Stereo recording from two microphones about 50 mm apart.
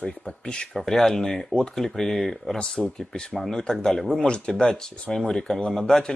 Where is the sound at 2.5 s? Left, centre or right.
Centre.